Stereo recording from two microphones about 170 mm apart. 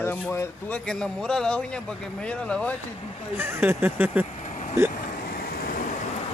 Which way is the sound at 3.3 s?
10° right (ahead or behind).